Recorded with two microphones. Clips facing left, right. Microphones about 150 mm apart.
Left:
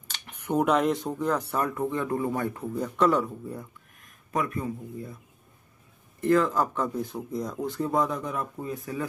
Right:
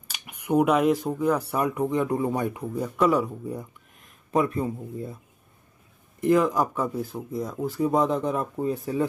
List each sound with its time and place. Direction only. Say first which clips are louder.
0.1 s speech: right 4 dB; 10° right (ahead or behind)
4.3 s a man's voice: right 5 dB; 25° right (ahead or behind)
6.2 s speech: right 2 dB; 15° right (ahead or behind)
7.9 s a man's voice: right 4 dB; 25° right (ahead or behind)